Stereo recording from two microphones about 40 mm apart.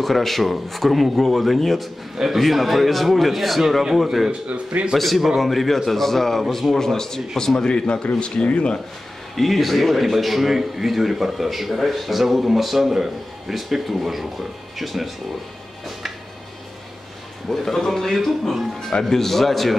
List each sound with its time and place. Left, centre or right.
0.0 s a man's voice: centre
4.3 s speech: right
4.9 s a man's voice: centre
7.7 s a man's voice: left
9.3 s a man's voice: centre
17.5 s speech: centre